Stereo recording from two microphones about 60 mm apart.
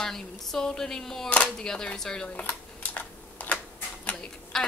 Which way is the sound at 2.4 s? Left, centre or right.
Left.